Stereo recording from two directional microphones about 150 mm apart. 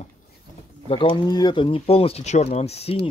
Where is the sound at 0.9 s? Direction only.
30° left (ahead or behind).